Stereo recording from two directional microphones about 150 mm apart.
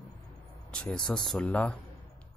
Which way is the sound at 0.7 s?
5° left (ahead or behind).